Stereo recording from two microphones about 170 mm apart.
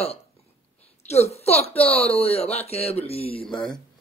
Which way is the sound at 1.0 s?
40° left (ahead or behind).